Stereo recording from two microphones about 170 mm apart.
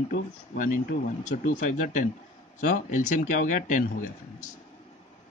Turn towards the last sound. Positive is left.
turn(degrees=50)  # may be behind; listen again after turning